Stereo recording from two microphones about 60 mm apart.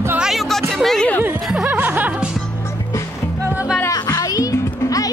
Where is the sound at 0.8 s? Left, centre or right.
Centre.